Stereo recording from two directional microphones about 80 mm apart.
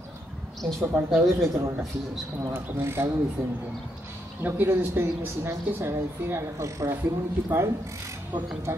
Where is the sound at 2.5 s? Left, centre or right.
Right.